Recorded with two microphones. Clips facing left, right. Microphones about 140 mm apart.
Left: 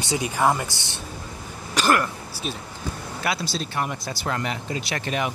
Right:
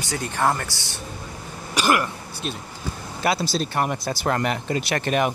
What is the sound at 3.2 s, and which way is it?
Speech, 35° right (ahead or behind).